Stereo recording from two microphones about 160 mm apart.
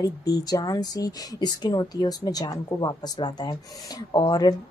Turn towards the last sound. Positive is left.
turn(degrees=25)  # may be behind; listen again after turning